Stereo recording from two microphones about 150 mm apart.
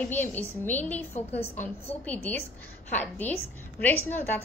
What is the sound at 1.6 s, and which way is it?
A woman's voice, 10° left (ahead or behind).